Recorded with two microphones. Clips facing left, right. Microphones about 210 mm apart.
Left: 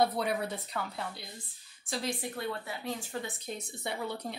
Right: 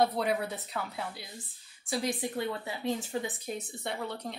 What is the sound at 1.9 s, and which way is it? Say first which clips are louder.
Speech: right 3 dB; 15° right (ahead or behind).